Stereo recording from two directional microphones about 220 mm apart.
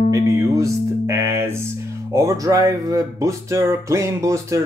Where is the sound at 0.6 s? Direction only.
10° right (ahead or behind).